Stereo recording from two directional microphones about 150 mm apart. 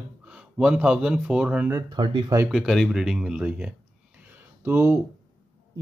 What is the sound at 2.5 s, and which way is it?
Speech, centre (ahead or behind).